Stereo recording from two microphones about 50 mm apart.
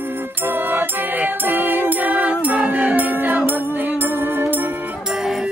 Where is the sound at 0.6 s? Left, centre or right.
Right.